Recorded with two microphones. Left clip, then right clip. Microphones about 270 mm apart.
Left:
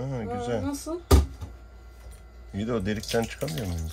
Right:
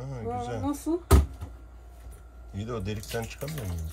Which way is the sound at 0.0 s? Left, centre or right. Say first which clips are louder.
Left 2 dB; left.